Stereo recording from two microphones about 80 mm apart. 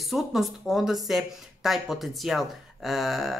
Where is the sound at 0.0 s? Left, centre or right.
Centre.